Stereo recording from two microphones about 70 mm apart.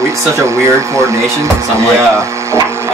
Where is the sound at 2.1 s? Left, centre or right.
Right.